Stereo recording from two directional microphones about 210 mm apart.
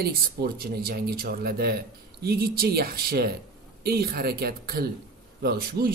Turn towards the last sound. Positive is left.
turn(degrees=-45)  # may be behind; listen again after turning